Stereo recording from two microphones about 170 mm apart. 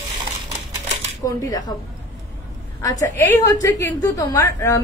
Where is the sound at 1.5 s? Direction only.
20° left (ahead or behind).